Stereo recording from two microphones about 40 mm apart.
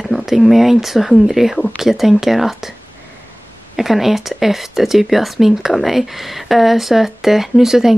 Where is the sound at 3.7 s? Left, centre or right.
Centre.